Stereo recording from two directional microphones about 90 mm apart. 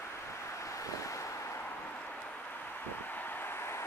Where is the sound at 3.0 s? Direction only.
20° left (ahead or behind).